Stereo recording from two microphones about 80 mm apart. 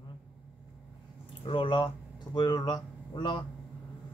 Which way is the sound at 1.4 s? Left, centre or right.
Left.